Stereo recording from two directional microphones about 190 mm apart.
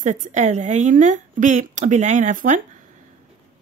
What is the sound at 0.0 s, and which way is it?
A woman's voice, 40° right (ahead or behind).